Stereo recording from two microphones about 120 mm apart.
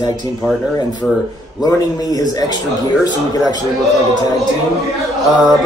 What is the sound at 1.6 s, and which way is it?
A man's voice, 30° left (ahead or behind).